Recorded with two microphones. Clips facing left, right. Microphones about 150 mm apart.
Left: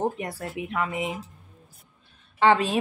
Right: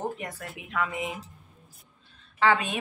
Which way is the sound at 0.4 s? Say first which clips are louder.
Left 2 dB; 30° left (ahead or behind).